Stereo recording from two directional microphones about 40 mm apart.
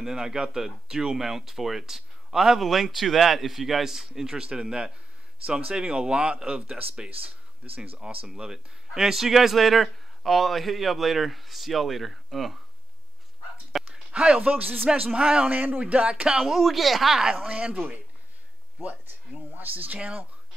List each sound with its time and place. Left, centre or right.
0.0 s speech: centre; by 7.8 s right
8.3 s speech: centre
13.7 s a sound: centre
14.1 s speech: right
14.5 s a man's voice: right
15.1 s speech: right
15.5 s a man's voice: right
15.8 s speech: right
16.3 s speech: centre
16.5 s speech: centre
17.2 s speech: centre
18.8 s speech: right